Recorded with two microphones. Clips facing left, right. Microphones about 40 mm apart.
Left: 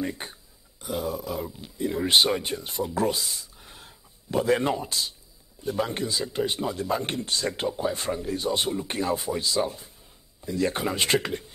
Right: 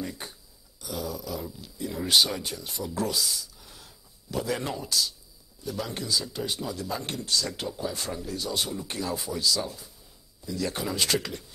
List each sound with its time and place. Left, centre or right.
0.0 s a man's voice: left